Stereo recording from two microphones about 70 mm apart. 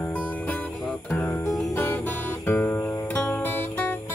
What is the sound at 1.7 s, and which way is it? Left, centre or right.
Music, left.